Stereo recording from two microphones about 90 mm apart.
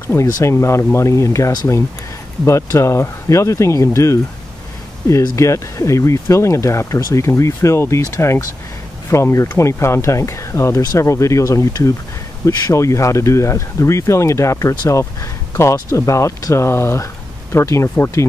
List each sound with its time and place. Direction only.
0.0 s speech: 30° left (ahead or behind)